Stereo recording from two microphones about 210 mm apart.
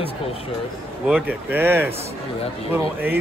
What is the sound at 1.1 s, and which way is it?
Speech, 10° right (ahead or behind).